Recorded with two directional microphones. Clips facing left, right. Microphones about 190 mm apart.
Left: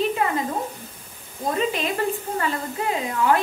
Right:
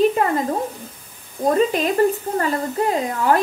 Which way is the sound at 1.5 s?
45° right (ahead or behind).